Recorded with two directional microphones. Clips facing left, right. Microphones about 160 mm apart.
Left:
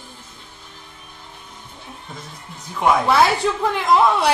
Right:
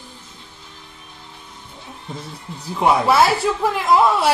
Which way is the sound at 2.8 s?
5° right (ahead or behind).